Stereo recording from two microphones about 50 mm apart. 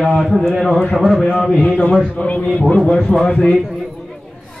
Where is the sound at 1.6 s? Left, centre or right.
Left.